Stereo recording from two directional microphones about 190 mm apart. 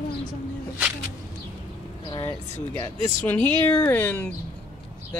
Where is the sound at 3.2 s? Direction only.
10° left (ahead or behind).